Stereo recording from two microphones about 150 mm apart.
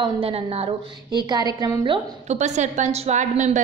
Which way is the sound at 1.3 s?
25° right (ahead or behind).